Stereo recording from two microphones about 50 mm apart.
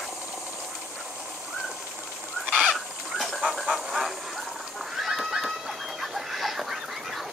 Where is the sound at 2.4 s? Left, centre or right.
Centre.